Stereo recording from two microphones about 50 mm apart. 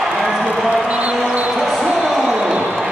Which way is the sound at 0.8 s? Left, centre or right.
Right.